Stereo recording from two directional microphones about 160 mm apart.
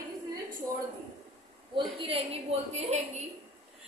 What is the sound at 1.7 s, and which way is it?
A woman's voice, 35° right (ahead or behind).